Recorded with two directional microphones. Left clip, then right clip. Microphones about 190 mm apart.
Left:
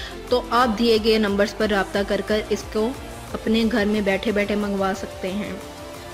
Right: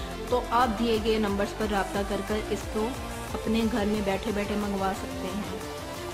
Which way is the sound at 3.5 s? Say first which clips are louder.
Left 7 dB; 15° left (ahead or behind).